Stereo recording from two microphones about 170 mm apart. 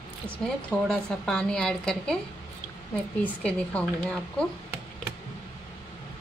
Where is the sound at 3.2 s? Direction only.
5° left (ahead or behind).